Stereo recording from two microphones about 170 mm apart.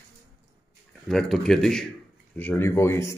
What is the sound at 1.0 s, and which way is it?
A man's voice, centre (ahead or behind).